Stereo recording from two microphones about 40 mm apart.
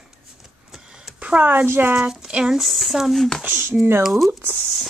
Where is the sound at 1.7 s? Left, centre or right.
Right.